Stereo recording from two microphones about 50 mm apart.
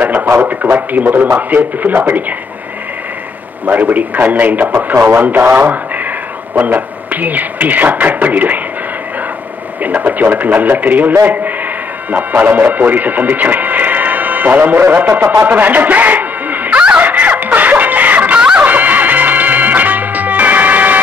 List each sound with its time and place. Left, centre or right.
0.0 s a sound: right
0.4 s speech: right
3.6 s speech: right
6.5 s speech: right
9.8 s speech: right
15.4 s a sound: right
17.0 s snicker: right
18.6 s music: right